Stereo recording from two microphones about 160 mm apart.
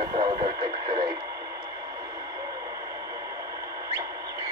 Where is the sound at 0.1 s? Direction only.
35° right (ahead or behind).